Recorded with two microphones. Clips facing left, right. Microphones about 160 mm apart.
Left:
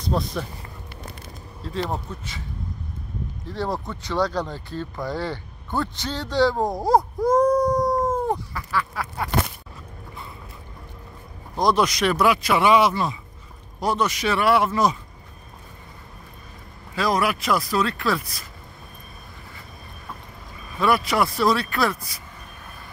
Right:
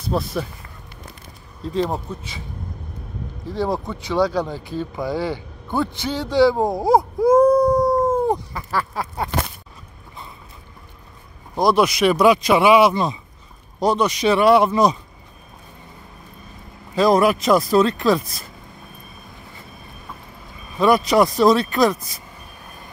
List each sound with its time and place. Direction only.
0.0 s speech: 5° right (ahead or behind)
1.6 s speech: 15° right (ahead or behind)
3.4 s speech: 10° right (ahead or behind)
8.9 s speech: 25° right (ahead or behind)
11.5 s speech: 10° right (ahead or behind)
16.9 s speech: 25° right (ahead or behind)
20.8 s speech: 20° right (ahead or behind)